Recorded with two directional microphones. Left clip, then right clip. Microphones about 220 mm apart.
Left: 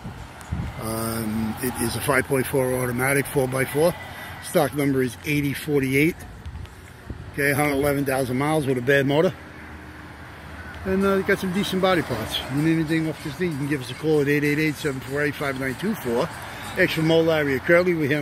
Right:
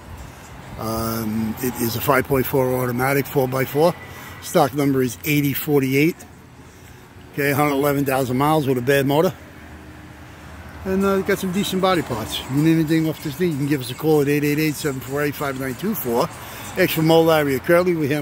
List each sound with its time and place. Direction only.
0.7 s speech: 15° right (ahead or behind)
7.3 s speech: 15° right (ahead or behind)
10.9 s speech: 10° right (ahead or behind)
12.6 s speech: 25° right (ahead or behind); by 18.1 s 10° right (ahead or behind)